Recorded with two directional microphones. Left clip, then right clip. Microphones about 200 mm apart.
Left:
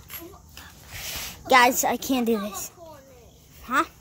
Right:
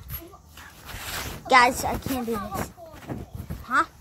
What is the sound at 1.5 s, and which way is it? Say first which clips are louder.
Speech: left 1 dB; 20° left (ahead or behind).